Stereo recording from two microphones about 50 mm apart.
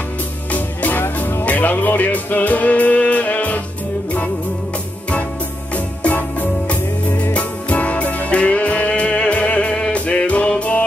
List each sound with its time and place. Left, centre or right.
0.5 s music: left
6.0 s music: left